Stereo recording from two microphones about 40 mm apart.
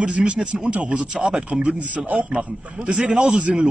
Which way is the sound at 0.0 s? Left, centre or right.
Right.